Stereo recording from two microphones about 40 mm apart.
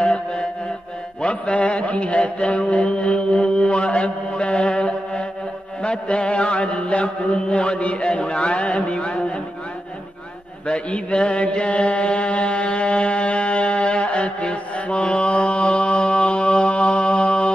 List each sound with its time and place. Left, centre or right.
0.1 s mantra: left
10.7 s mantra: left